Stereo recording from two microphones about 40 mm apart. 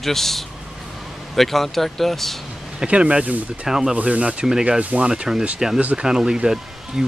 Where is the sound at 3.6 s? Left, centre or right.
Centre.